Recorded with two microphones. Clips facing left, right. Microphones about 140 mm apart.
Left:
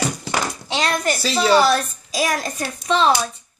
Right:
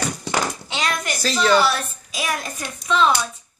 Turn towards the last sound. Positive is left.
turn(degrees=35)  # may be behind; listen again after turning